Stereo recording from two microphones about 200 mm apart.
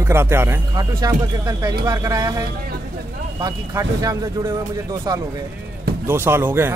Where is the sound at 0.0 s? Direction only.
10° right (ahead or behind).